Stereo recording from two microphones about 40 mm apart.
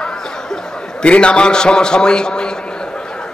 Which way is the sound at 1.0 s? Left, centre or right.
Left.